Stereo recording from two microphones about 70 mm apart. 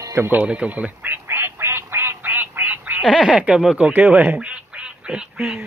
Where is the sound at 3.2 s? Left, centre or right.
Centre.